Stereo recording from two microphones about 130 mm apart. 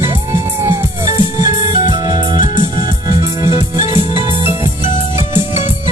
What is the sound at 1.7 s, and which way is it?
Music, 30° right (ahead or behind).